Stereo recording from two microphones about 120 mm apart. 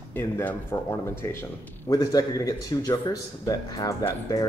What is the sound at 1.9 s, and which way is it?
A man's voice, 30° left (ahead or behind).